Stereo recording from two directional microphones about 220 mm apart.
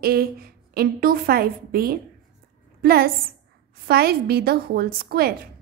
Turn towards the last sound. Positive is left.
turn(degrees=-45)  # may be behind; listen again after turning